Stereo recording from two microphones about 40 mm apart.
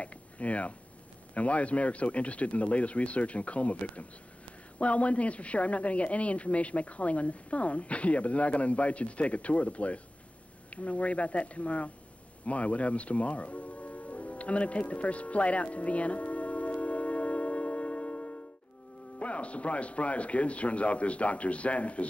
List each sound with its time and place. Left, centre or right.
0.0 s speech: left
12.4 s music: left
19.1 s speech: left